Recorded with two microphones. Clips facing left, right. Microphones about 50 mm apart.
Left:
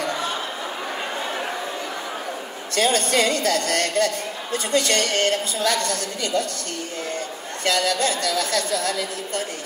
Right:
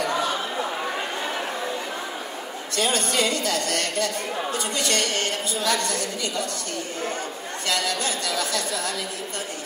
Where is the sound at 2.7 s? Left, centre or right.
Left.